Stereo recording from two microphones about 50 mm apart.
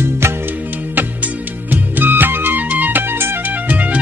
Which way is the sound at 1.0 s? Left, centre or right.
Right.